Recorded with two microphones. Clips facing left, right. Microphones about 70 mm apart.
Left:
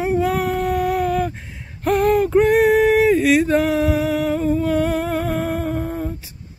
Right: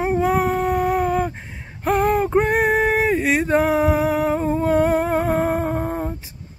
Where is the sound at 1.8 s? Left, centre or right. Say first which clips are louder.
Left 2 dB; right.